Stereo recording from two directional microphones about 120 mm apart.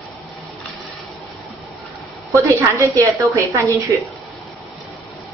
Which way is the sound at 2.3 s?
25° right (ahead or behind).